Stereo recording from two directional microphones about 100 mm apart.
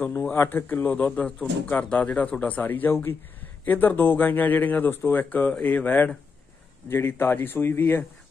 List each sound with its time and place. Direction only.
0.0 s speech: 20° left (ahead or behind)